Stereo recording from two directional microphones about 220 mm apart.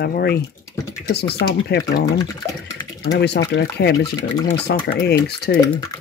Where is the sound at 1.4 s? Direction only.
50° left (ahead or behind).